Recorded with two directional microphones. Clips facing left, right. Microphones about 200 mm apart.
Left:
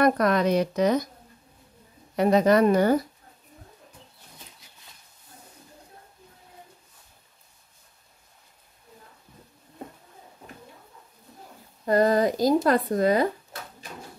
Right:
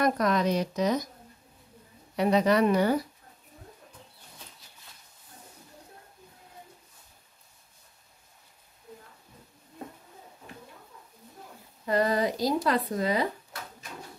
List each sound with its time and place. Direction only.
0.0 s speech: 60° left (ahead or behind)
2.1 s speech: 45° left (ahead or behind)
11.8 s speech: 45° left (ahead or behind)